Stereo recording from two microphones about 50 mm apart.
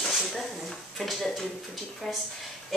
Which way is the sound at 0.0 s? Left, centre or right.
Centre.